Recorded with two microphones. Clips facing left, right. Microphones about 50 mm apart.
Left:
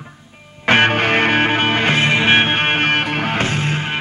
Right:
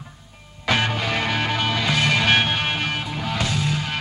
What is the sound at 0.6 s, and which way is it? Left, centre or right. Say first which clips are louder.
Music: left 8 dB; left.